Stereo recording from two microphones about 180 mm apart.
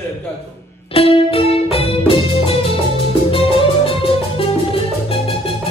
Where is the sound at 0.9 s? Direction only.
30° left (ahead or behind).